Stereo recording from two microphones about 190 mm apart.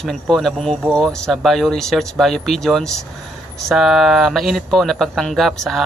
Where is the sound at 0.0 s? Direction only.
Centre (ahead or behind).